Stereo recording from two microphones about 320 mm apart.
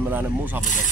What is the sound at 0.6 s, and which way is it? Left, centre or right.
Speech, left.